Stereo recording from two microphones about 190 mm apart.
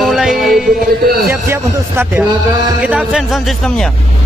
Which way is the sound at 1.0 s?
50° right (ahead or behind).